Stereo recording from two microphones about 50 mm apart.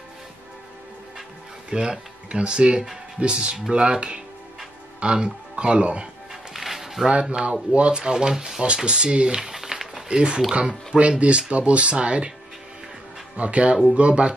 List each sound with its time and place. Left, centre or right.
1.7 s speech: centre
6.5 s music: centre
7.1 s speech: centre
10.0 s speech: centre
13.4 s speech: right